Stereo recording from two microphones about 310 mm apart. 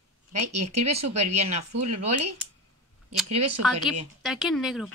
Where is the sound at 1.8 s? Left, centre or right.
Right.